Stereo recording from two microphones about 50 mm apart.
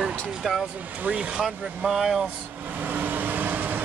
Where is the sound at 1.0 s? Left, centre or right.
Right.